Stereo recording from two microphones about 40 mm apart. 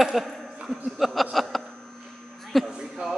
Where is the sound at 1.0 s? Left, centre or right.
Centre.